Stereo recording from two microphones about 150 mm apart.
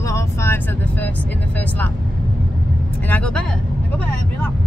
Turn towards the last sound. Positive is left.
turn(degrees=5)  # may be behind; listen again after turning